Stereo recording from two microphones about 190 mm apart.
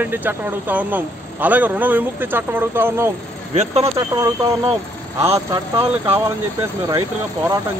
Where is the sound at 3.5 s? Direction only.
35° right (ahead or behind).